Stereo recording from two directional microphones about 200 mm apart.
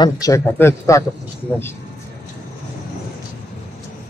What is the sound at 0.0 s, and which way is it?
Speech, 15° left (ahead or behind).